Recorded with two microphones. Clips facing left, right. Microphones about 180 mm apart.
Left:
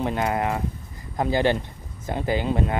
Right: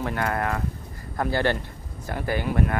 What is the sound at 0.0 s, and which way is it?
Speech, 20° left (ahead or behind).